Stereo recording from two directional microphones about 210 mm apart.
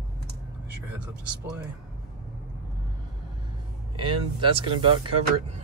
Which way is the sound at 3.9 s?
25° right (ahead or behind).